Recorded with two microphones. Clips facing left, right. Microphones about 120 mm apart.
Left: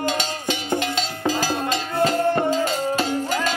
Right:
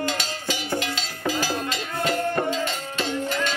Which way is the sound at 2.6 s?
40° left (ahead or behind).